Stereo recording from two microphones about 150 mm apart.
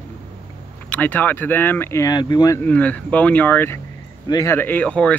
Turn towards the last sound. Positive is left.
turn(degrees=10)  # may be behind; listen again after turning